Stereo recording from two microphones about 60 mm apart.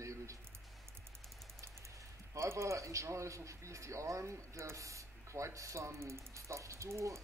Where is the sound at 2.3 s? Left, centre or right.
Right.